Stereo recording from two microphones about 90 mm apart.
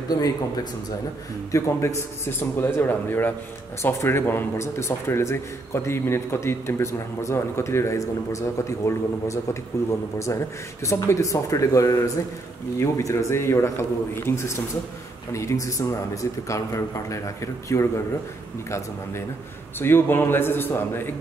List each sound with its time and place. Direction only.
0.1 s speech: 45° left (ahead or behind)
1.5 s a man's voice: 35° left (ahead or behind)
19.8 s a man's voice: 25° left (ahead or behind)